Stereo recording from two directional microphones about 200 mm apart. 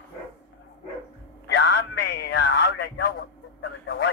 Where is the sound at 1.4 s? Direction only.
60° left (ahead or behind).